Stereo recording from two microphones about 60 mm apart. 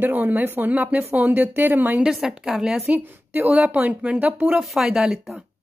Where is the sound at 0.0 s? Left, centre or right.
Right.